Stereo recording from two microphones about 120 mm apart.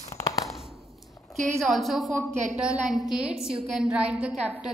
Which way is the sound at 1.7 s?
Centre (ahead or behind).